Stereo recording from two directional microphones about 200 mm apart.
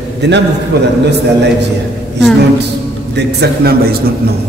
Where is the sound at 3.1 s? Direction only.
55° right (ahead or behind).